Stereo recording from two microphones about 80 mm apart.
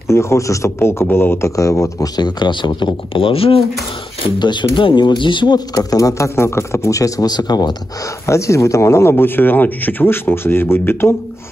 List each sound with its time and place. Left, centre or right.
0.1 s speech: left
1.6 s speech: left
2.1 s speech: left
4.4 s speech: left
5.8 s speech: left
7.2 s speech: left
8.3 s speech: left
9.1 s speech: left